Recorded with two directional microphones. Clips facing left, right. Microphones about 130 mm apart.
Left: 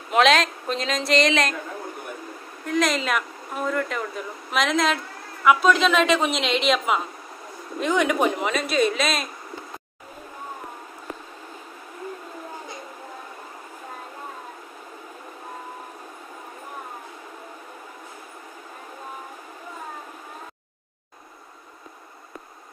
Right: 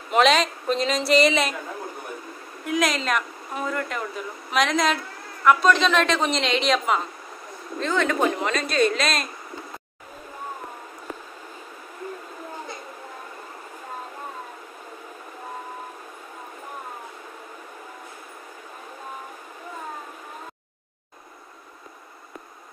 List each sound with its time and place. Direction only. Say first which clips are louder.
0.1 s a man's voice: even; centre (ahead or behind)
2.6 s a man's voice: left 1 dB; 5° right (ahead or behind)
7.8 s a man's voice: left 1 dB; 15° left (ahead or behind)